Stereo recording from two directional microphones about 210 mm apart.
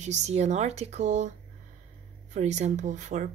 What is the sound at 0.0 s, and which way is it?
Speech, 35° right (ahead or behind).